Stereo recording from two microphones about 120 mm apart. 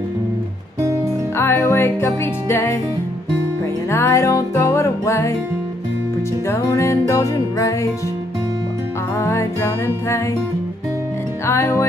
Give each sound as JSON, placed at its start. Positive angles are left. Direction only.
{"t": 1.3, "sound": "music", "side_deg": 20}
{"t": 3.9, "sound": "music", "side_deg": 25}
{"t": 6.4, "sound": "music", "side_deg": 25}
{"t": 9.2, "sound": "music", "side_deg": 25}
{"t": 11.4, "sound": "music", "side_deg": 25}